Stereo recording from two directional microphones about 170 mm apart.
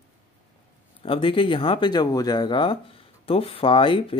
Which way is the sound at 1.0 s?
30° left (ahead or behind).